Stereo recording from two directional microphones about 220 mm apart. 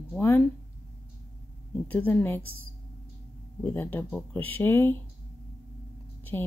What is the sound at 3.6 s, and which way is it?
Speech, 10° left (ahead or behind).